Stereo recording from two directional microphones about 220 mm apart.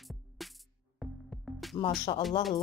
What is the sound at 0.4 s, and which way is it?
Music, centre (ahead or behind).